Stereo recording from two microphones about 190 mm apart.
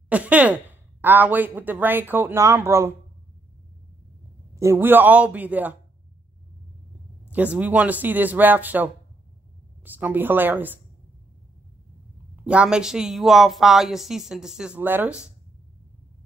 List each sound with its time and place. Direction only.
0.1 s a woman's voice: 5° right (ahead or behind)
4.6 s speech: 15° right (ahead or behind)
7.2 s speech: 10° right (ahead or behind)
12.4 s speech: 5° right (ahead or behind)